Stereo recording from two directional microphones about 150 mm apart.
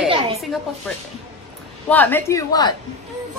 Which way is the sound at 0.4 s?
Centre (ahead or behind).